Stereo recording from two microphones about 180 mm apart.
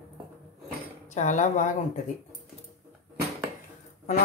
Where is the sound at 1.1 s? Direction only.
45° left (ahead or behind).